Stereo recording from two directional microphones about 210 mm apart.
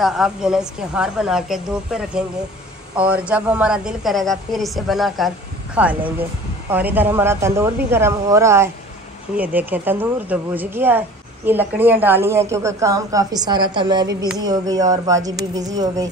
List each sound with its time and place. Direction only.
0.0 s a woman's voice: 5° right (ahead or behind)